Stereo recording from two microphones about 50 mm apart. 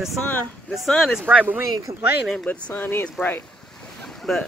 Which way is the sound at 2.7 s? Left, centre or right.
Left.